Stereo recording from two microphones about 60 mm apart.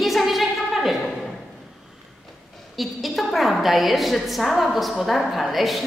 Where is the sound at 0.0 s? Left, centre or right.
Centre.